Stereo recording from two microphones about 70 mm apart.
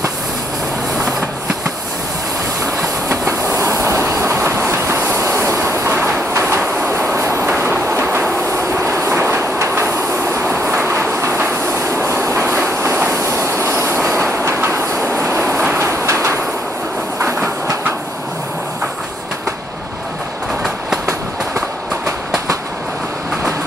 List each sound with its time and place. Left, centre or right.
3.1 s train: right
7.2 s train: right
7.4 s train: right